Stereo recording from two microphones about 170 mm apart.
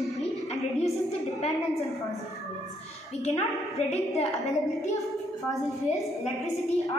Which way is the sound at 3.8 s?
40° left (ahead or behind).